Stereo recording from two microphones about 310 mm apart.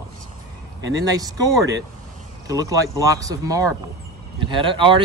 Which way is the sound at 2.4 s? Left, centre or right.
Centre.